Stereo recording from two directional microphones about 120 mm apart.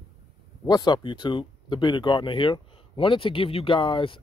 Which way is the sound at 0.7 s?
35° left (ahead or behind).